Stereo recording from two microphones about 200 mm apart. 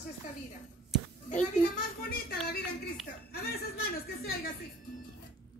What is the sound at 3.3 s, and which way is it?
Speech, 50° left (ahead or behind).